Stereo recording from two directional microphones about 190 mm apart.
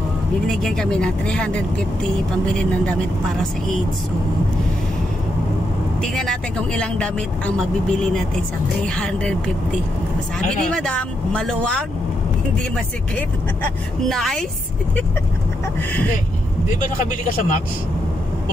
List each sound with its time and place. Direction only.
0.6 s speech: 5° left (ahead or behind)
2.5 s speech: 5° left (ahead or behind)
6.1 s speech: 5° left (ahead or behind)
8.8 s speech: 5° left (ahead or behind)
10.7 s speech: 5° left (ahead or behind)
14.0 s speech: 5° left (ahead or behind)
17.0 s speech: 45° left (ahead or behind)